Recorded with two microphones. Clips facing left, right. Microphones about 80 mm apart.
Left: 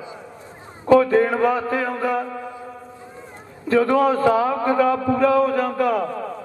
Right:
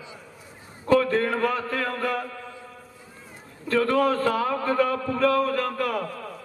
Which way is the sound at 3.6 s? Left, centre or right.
Centre.